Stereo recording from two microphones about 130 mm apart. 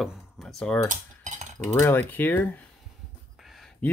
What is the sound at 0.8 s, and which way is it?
Cutlery, 70° right (ahead or behind).